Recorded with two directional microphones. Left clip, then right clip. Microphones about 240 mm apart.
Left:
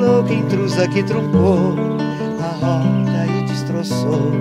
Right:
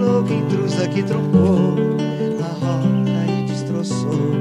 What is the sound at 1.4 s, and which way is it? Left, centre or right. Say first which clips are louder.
Music: left 4 dB; left.